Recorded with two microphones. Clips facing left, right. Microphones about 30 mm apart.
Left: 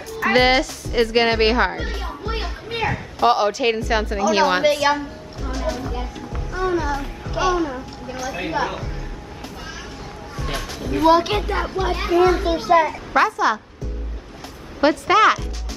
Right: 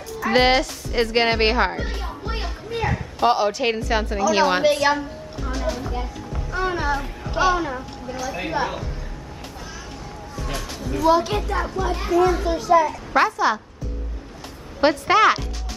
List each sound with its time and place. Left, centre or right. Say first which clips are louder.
0.3 s a woman's voice: left 1 dB; centre
2.2 s children playing: left 3 dB; centre
2.9 s a woman's voice: left 2 dB; centre
6.5 s speech: left 2 dB; right
7.0 s speech: right 1 dB; centre
8.1 s a woman's voice: left 1 dB; centre
10.8 s a woman's voice: left 3 dB; left
13.1 s speech: left 1 dB; centre
14.8 s speech: left 1 dB; centre